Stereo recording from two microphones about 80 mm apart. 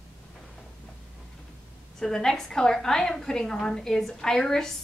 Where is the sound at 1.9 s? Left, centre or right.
Centre.